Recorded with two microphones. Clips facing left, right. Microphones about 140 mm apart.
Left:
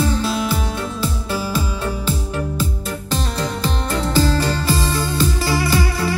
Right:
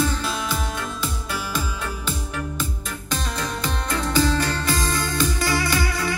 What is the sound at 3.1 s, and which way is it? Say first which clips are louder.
Music: left 4 dB; 30° left (ahead or behind).